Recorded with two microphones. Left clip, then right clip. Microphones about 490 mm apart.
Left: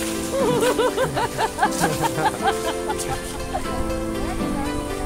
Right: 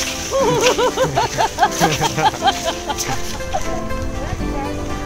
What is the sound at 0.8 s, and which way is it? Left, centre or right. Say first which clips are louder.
Speech: right 4 dB; centre.